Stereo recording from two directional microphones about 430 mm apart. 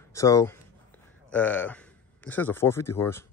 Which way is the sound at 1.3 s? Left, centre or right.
Centre.